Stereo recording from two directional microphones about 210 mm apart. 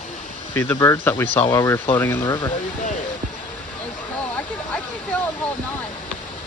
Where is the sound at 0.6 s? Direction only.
10° left (ahead or behind).